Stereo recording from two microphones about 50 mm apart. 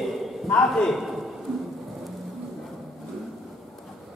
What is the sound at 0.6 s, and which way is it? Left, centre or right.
Speech, centre.